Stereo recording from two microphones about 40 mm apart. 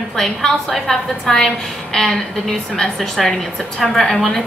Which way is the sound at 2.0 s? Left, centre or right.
Centre.